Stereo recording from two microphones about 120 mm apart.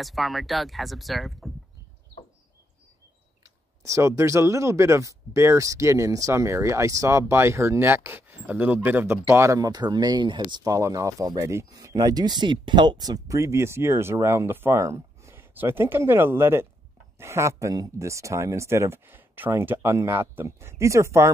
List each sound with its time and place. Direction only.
0.0 s speech: centre (ahead or behind)
3.8 s speech: 25° right (ahead or behind)